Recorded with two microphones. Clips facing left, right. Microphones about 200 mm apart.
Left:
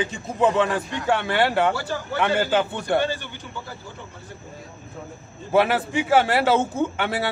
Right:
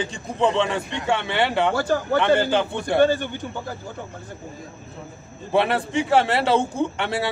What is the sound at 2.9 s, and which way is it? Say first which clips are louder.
Speech: right 7 dB; 50° right (ahead or behind).